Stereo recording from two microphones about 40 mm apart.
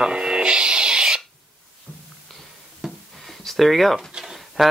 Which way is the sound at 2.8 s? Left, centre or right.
Centre.